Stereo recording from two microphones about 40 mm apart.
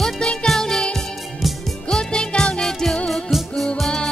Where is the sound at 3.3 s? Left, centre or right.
Centre.